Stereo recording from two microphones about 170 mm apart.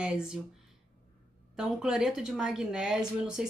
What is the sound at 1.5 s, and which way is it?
Speech, 5° right (ahead or behind).